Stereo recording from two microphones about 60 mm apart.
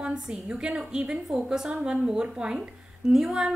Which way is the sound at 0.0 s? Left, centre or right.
Centre.